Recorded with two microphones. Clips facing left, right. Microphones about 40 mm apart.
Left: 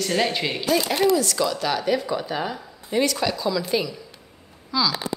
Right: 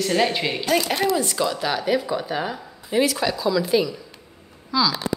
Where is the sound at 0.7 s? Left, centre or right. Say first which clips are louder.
Left 1 dB; right.